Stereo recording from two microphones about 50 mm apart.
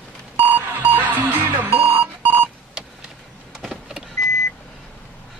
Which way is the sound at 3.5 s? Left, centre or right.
Centre.